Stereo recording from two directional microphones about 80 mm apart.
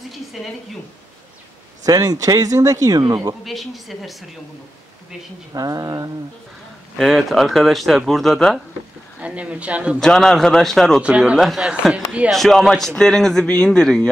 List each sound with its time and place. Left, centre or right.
0.1 s a sound: centre
1.9 s speech: right
3.4 s speech: centre
5.5 s speech: right
7.0 s speech: centre
9.2 s speech: centre
9.9 s speech: centre
11.0 s speech: centre
11.3 s speech: centre
11.7 s speech: centre
12.3 s speech: centre